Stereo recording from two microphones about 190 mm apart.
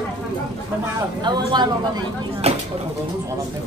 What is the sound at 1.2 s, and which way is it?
Speech, 25° right (ahead or behind).